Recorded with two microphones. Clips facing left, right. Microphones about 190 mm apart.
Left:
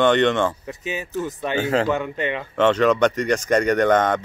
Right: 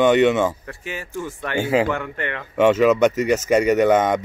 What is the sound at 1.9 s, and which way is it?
Speech, 20° left (ahead or behind).